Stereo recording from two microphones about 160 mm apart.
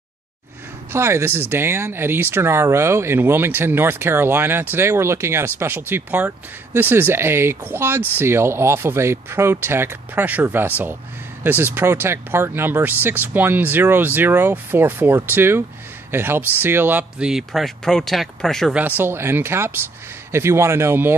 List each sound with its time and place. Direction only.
0.9 s speech: 15° right (ahead or behind); by 18.8 s 5° left (ahead or behind)
18.8 s speech: 10° right (ahead or behind)